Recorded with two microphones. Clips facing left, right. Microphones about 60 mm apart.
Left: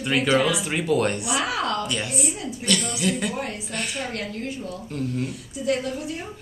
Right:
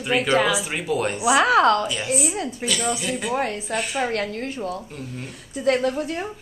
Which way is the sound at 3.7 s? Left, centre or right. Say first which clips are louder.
Right 5 dB; centre.